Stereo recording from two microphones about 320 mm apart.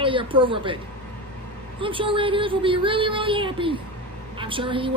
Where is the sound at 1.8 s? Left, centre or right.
Centre.